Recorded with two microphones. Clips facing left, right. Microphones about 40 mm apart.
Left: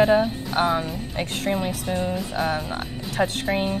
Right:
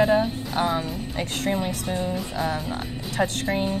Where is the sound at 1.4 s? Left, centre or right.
Centre.